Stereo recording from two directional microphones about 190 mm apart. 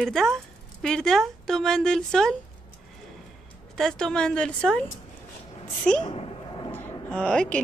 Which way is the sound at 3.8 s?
Centre (ahead or behind).